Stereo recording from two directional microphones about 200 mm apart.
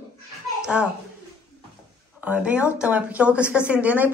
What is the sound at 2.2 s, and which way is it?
Speech, 5° right (ahead or behind).